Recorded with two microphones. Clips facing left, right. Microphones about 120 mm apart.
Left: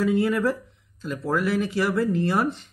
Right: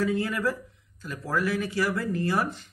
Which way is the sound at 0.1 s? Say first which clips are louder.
Left 5 dB; 25° left (ahead or behind).